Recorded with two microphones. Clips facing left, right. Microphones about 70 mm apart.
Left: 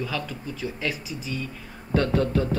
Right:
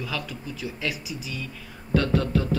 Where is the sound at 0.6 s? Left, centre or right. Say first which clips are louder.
Left 3 dB; left.